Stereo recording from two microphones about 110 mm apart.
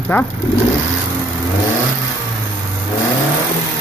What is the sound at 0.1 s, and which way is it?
Speech, 20° left (ahead or behind).